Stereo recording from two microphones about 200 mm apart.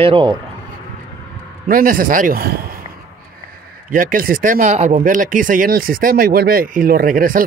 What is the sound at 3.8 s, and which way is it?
Speech, 45° right (ahead or behind).